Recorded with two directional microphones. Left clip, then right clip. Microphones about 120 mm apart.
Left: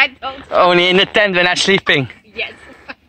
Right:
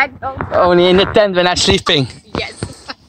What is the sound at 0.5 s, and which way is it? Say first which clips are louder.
A man's voice: even; 10° left (ahead or behind).